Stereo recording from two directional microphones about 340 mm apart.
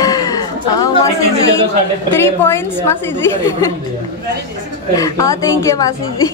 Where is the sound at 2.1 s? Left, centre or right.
Centre.